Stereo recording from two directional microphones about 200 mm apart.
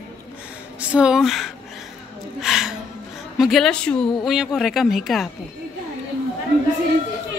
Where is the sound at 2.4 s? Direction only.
Centre (ahead or behind).